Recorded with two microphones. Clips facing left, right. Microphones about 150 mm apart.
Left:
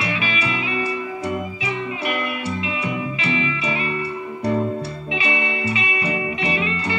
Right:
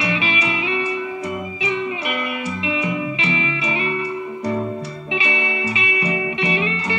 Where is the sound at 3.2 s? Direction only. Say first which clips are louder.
Even; 25° right (ahead or behind).